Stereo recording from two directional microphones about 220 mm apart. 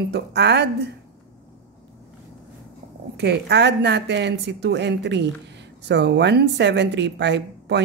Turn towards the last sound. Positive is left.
turn(degrees=-50)  # may be behind; listen again after turning